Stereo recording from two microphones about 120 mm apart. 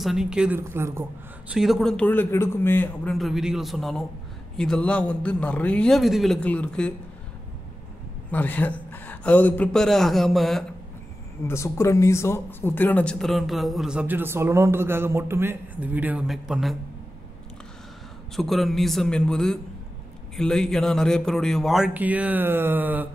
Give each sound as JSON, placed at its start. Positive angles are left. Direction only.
{"t": 0.0, "sound": "speech", "side_deg": -5}
{"t": 0.6, "sound": "speech", "side_deg": -20}
{"t": 1.5, "sound": "a man's voice", "side_deg": 0}
{"t": 3.1, "sound": "a man's voice", "side_deg": 0}
{"t": 8.3, "sound": "a man's voice", "side_deg": 15}
{"t": 11.4, "sound": "speech", "side_deg": 20}
{"t": 16.3, "sound": "speech", "side_deg": -5}
{"t": 18.3, "sound": "speech", "side_deg": 0}
{"t": 21.9, "sound": "speech", "side_deg": -15}